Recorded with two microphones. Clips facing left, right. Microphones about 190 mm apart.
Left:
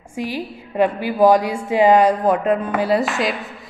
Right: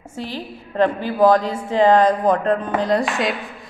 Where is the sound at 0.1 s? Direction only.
10° left (ahead or behind).